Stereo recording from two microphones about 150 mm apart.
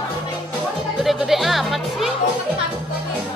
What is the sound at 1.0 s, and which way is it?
Music, centre (ahead or behind).